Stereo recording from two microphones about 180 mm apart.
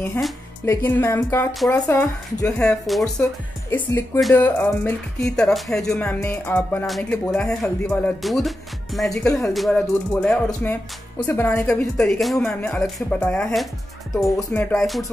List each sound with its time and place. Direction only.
0.7 s speech: 15° left (ahead or behind)
2.7 s music: 5° left (ahead or behind)
3.7 s speech: 15° left (ahead or behind)
4.3 s music: 10° left (ahead or behind)